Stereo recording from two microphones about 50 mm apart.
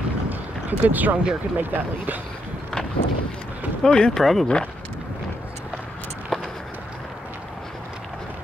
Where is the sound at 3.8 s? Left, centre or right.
Centre.